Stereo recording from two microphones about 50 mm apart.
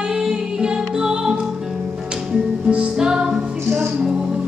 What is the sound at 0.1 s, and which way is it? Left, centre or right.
Music, centre.